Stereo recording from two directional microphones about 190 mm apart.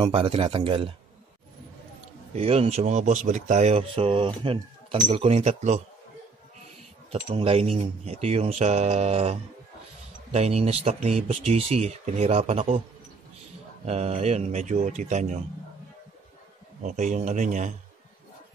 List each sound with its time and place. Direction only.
0.0 s a man's voice: 30° right (ahead or behind)
2.3 s speech: 30° right (ahead or behind)
7.1 s speech: 30° right (ahead or behind)
13.8 s speech: 35° right (ahead or behind)
16.8 s speech: 40° right (ahead or behind)